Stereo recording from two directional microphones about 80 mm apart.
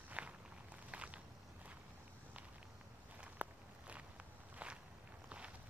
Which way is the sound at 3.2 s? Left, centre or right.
Centre.